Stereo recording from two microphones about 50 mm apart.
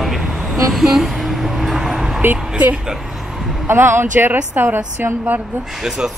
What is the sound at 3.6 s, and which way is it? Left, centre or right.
Speech, right.